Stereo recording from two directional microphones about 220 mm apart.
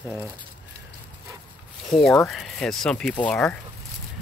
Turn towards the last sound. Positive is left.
turn(degrees=5)  # may be behind; listen again after turning